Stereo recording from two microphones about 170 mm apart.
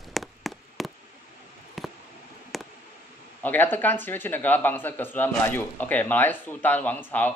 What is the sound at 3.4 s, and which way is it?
Speech, 10° left (ahead or behind).